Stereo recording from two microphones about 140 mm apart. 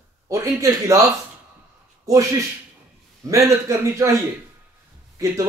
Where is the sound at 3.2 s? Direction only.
25° right (ahead or behind).